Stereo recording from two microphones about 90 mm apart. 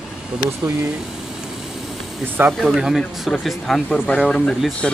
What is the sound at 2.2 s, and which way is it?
Speech, 20° right (ahead or behind).